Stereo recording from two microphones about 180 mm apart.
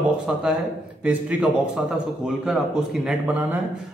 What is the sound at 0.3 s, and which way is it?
Speech, 5° right (ahead or behind).